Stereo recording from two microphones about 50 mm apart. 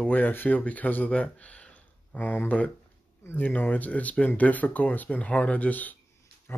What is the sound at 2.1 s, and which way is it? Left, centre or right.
Speech, left.